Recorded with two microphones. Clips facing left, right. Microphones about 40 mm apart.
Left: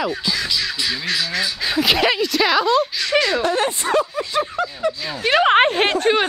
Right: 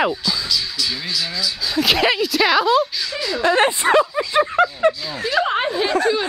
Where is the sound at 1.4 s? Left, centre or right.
Left.